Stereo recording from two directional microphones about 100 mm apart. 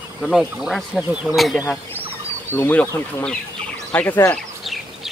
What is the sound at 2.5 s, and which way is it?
Speech, 20° left (ahead or behind).